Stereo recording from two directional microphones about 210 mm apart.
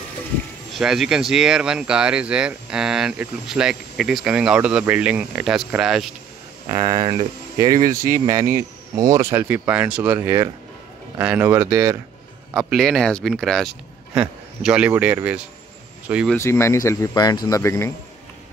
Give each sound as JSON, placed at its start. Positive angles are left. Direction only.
{"t": 0.7, "sound": "speech", "side_deg": 0}
{"t": 6.7, "sound": "speech", "side_deg": -20}
{"t": 12.5, "sound": "speech", "side_deg": 0}
{"t": 16.3, "sound": "speech", "side_deg": 10}